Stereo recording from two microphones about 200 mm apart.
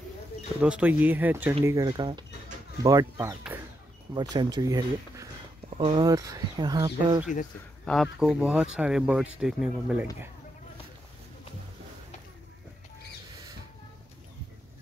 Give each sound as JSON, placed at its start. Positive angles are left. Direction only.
{"t": 0.6, "sound": "speech", "side_deg": -5}
{"t": 7.8, "sound": "speech", "side_deg": 0}